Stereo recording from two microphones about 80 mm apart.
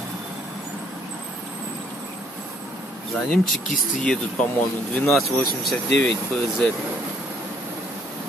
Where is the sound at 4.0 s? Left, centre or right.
Centre.